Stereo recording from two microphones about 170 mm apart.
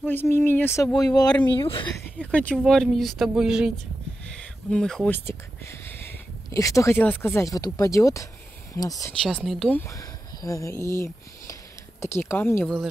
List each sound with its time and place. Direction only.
0.0 s speech: 10° left (ahead or behind); by 1.9 s 30° left (ahead or behind)
2.0 s speech: 10° left (ahead or behind)
9.2 s speech: 5° left (ahead or behind)
9.8 s speech: 20° left (ahead or behind)